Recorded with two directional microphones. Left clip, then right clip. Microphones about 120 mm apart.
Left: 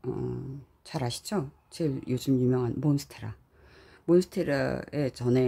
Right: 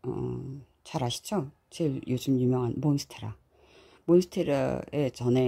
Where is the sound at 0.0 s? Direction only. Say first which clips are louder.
Even; 10° right (ahead or behind).